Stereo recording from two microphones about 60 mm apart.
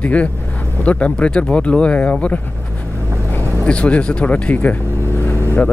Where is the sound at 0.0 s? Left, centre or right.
Left.